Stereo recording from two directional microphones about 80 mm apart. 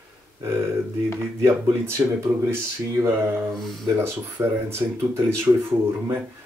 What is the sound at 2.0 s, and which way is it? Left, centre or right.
Speech, right.